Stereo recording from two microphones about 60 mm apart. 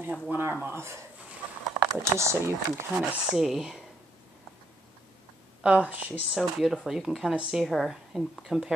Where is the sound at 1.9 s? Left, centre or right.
Right.